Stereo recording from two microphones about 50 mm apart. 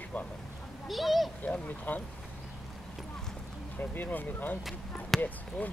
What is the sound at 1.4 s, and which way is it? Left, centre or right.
Speech, left.